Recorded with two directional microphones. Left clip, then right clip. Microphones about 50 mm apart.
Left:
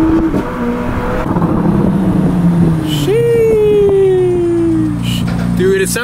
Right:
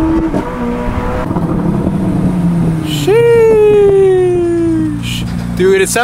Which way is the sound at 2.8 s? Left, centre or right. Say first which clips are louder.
Right 5 dB; right.